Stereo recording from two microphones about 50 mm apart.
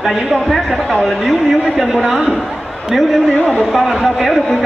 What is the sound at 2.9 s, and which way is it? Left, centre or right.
Speech, centre.